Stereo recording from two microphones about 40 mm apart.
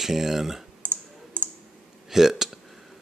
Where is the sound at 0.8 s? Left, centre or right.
Left.